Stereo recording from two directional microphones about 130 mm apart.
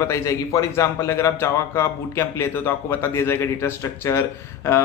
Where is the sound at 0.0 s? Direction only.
20° left (ahead or behind).